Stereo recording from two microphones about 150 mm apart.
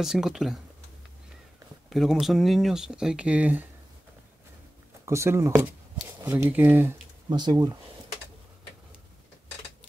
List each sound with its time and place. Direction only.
0.0 s speech: 5° right (ahead or behind)
1.9 s speech: centre (ahead or behind)
5.0 s speech: 20° right (ahead or behind)
7.2 s speech: 30° right (ahead or behind)